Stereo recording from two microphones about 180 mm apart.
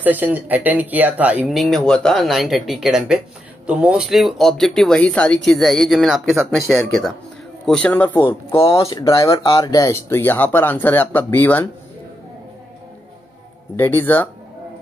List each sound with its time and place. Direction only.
0.0 s speech: 10° right (ahead or behind); by 8.2 s 10° left (ahead or behind)
8.5 s speech: 30° left (ahead or behind); by 11.6 s 10° left (ahead or behind)
13.7 s speech: 10° left (ahead or behind)